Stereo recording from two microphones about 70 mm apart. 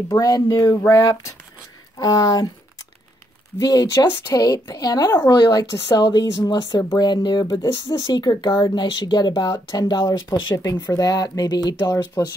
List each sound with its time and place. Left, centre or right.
0.1 s speech: left
0.8 s speech: left
2.0 s speech: left
3.6 s a woman's voice: left
5.3 s speech: left
5.9 s speech: left